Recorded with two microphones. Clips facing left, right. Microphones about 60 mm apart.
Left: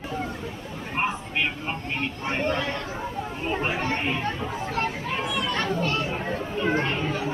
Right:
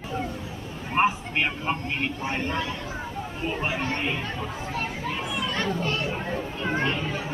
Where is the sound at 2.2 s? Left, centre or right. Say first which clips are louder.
Left 2 dB; left.